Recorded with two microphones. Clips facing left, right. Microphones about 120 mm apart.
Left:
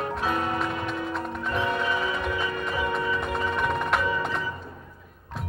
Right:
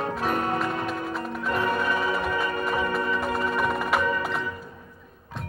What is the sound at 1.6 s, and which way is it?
Tubular bells, 45° right (ahead or behind).